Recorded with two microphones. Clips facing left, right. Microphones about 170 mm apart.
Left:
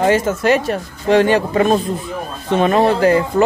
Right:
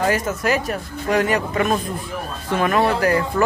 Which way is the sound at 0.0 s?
25° left (ahead or behind).